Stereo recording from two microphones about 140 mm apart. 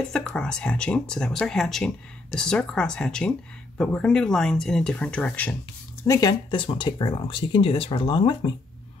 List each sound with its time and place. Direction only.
0.1 s speech: 5° left (ahead or behind)
6.0 s speech: 25° left (ahead or behind)
6.5 s speech: 35° left (ahead or behind)